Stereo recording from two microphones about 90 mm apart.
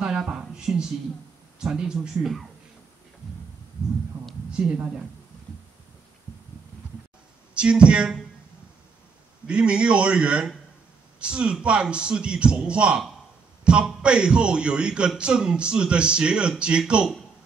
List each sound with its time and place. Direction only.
0.0 s a sound: 10° right (ahead or behind)
1.6 s a man's voice: 10° right (ahead or behind)
4.1 s speech: 25° right (ahead or behind)
4.5 s a woman's voice: 10° right (ahead or behind)
7.5 s a man's voice: 10° right (ahead or behind)
9.5 s a man's voice: 10° right (ahead or behind)